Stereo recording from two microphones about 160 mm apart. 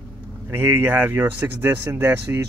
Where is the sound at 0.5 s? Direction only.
15° right (ahead or behind).